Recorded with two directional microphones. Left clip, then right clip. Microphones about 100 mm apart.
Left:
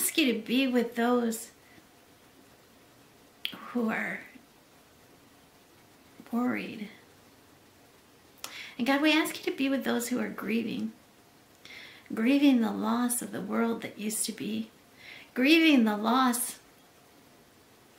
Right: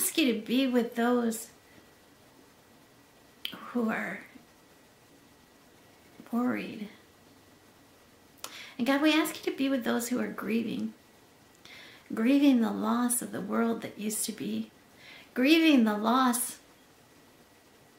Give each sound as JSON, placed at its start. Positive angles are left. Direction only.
{"t": 0.0, "sound": "speech", "side_deg": -5}
{"t": 3.4, "sound": "finger snapping", "side_deg": 0}
{"t": 6.3, "sound": "speech", "side_deg": -10}
{"t": 8.4, "sound": "speech", "side_deg": -10}